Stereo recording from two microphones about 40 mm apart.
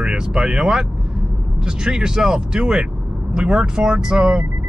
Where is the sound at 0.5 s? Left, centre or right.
Centre.